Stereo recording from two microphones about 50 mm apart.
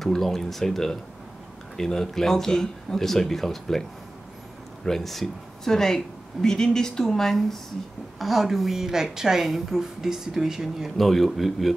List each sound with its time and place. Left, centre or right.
0.0 s speech: centre
4.8 s a woman's voice: centre
11.0 s speech: centre